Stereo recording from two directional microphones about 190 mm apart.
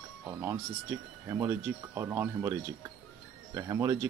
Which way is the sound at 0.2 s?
15° right (ahead or behind).